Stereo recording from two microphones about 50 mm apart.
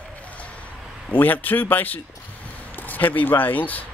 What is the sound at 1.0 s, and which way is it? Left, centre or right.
Speech, left.